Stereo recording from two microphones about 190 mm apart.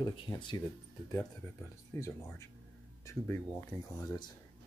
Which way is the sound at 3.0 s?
15° left (ahead or behind).